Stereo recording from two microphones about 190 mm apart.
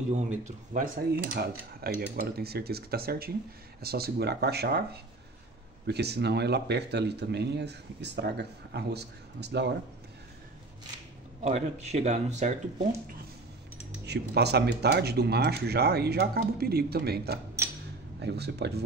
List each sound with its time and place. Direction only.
0.1 s speech: 40° right (ahead or behind); by 4.8 s 55° right (ahead or behind)
5.9 s speech: 60° right (ahead or behind)
11.4 s speech: 35° right (ahead or behind)
14.0 s speech: 60° right (ahead or behind)